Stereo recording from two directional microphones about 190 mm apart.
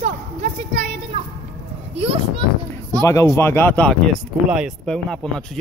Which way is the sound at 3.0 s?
15° left (ahead or behind).